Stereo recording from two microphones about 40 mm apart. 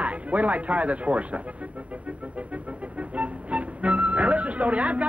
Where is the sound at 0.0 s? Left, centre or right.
Right.